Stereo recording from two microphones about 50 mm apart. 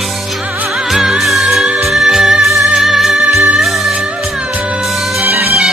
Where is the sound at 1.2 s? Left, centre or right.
Centre.